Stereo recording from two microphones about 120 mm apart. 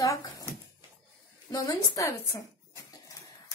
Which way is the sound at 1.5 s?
30° left (ahead or behind).